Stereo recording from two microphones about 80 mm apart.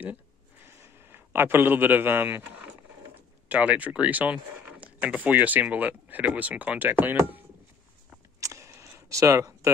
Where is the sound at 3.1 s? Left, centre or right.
Centre.